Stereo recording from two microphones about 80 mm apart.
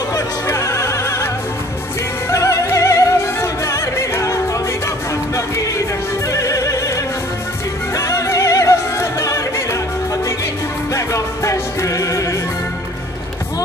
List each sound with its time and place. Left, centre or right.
0.5 s music: left
6.2 s music: left
7.9 s opera: left
10.9 s music: left